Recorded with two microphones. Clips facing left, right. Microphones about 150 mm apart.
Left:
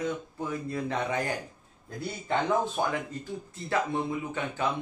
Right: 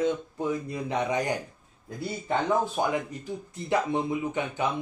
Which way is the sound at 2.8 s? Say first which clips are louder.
Right 2 dB; 15° right (ahead or behind).